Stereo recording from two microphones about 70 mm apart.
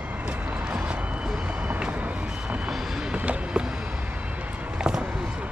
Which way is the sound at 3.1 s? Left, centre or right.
Centre.